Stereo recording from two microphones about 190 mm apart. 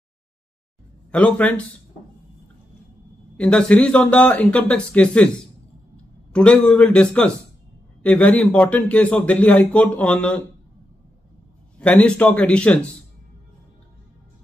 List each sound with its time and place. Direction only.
1.1 s a man's voice: 5° left (ahead or behind)
3.3 s a man's voice: 5° left (ahead or behind)
6.3 s a man's voice: 5° left (ahead or behind)
11.8 s a man's voice: 5° left (ahead or behind)